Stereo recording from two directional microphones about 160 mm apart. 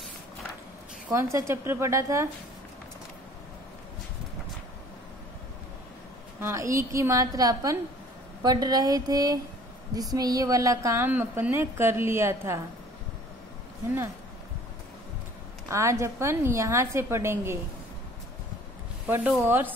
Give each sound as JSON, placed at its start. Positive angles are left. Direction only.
{"t": 1.1, "sound": "a woman's voice", "side_deg": -15}
{"t": 6.4, "sound": "a woman's voice", "side_deg": -20}
{"t": 15.7, "sound": "a woman's voice", "side_deg": -20}
{"t": 19.0, "sound": "a woman's voice", "side_deg": -10}